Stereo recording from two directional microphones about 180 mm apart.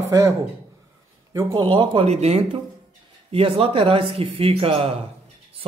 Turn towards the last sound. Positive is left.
turn(degrees=-35)  # may be behind; listen again after turning